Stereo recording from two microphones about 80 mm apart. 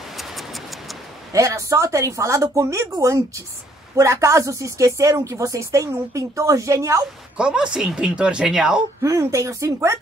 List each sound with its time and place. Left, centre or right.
0.2 s a sound: centre
1.3 s a woman's voice: right
7.3 s speech: centre
9.0 s a woman's voice: right